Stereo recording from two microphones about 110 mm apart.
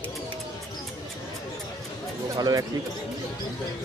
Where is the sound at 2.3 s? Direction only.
35° right (ahead or behind).